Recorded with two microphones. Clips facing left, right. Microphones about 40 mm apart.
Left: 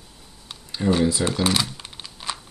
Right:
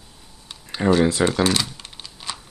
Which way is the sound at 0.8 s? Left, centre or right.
Right.